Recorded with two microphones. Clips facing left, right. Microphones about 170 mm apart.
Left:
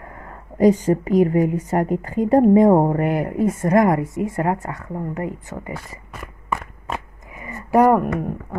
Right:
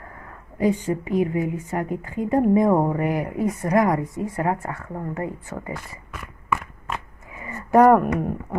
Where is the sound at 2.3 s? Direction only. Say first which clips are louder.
Left 5 dB; 30° left (ahead or behind).